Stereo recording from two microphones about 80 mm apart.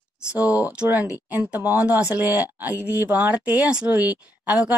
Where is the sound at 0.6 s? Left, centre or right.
Centre.